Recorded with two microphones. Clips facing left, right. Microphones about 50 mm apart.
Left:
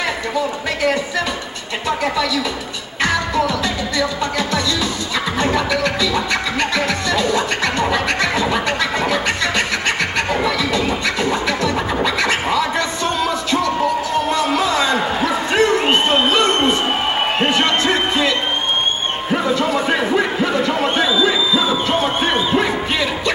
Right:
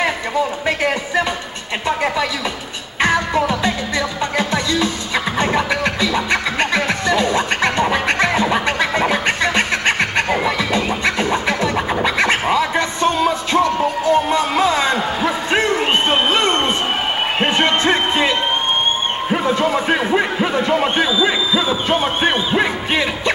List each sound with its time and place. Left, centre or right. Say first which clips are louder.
3.0 s music: right 1 dB; right
7.9 s scratching: right 1 dB; right
17.5 s music: right 3 dB; right
19.7 s speech: even; centre
20.7 s music: right 1 dB; centre